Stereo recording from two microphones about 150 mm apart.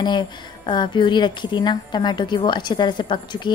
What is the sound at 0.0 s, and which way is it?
A woman's voice, 30° left (ahead or behind).